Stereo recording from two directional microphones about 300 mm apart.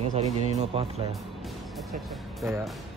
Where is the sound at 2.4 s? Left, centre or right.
Centre.